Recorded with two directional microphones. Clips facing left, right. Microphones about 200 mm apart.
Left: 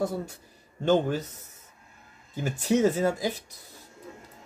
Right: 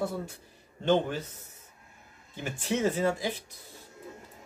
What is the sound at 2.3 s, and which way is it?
Speech, 40° left (ahead or behind).